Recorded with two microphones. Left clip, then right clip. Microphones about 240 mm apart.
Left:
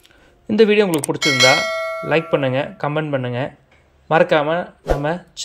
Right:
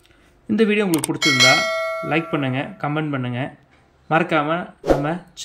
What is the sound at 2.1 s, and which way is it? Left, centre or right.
Speech, centre.